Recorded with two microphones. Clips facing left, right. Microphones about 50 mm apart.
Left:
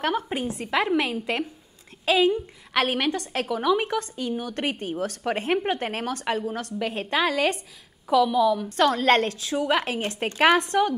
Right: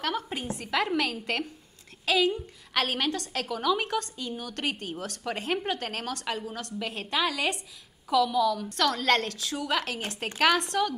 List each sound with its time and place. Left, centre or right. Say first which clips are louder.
0.0 s a woman's voice: left 5 dB; left